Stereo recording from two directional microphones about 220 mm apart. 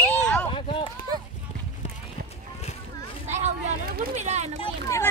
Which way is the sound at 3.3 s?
30° right (ahead or behind).